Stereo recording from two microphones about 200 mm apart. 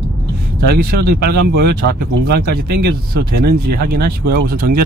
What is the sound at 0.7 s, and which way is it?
Speech, 50° right (ahead or behind).